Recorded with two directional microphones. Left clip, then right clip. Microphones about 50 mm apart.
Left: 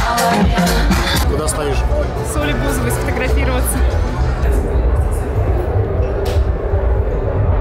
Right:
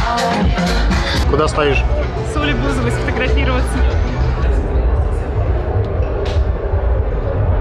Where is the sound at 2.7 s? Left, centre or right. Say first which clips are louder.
Even; centre.